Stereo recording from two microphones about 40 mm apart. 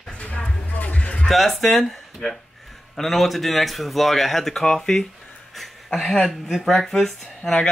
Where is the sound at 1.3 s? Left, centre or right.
Centre.